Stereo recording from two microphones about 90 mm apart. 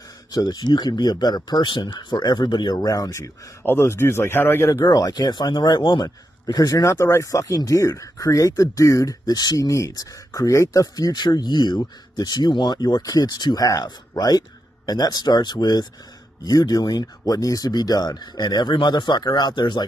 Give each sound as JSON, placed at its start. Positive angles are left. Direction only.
{"t": 0.3, "sound": "speech", "side_deg": 45}
{"t": 3.6, "sound": "speech", "side_deg": 25}
{"t": 4.8, "sound": "speech", "side_deg": 50}
{"t": 6.0, "sound": "speech", "side_deg": 40}